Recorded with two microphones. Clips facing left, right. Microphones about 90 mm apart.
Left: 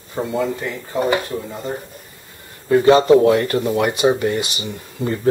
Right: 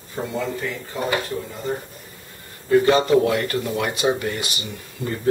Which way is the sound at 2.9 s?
35° left (ahead or behind).